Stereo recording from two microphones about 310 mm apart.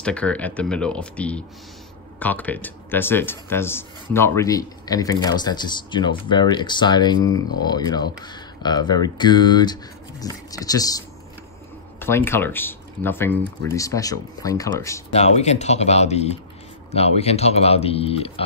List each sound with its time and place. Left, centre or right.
0.0 s speech: centre
15.1 s speech: left